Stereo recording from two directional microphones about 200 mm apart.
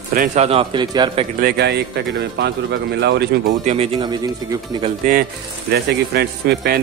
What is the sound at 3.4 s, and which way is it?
Speech, 35° right (ahead or behind).